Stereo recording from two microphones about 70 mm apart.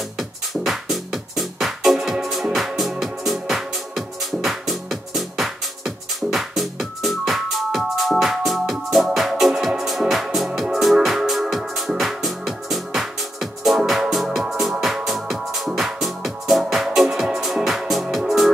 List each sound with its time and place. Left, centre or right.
0.2 s music: centre